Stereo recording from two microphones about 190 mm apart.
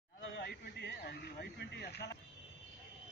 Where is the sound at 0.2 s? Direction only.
65° left (ahead or behind).